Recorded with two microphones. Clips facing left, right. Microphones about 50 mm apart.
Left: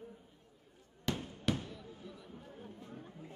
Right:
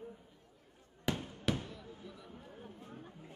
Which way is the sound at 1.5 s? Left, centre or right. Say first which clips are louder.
Even; centre.